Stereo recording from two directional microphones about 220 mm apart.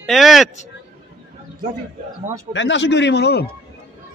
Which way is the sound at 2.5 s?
55° left (ahead or behind).